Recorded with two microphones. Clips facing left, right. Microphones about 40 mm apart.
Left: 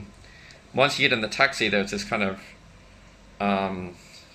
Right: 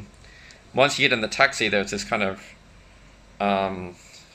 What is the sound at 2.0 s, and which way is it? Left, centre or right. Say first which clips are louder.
Speech: right 2 dB; centre.